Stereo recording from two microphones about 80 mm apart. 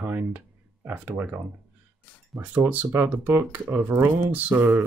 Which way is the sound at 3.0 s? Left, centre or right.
Right.